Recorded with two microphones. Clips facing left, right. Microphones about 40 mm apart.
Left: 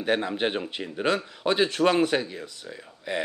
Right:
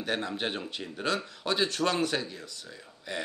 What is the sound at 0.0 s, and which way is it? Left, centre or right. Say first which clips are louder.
Speech: left 6 dB; centre.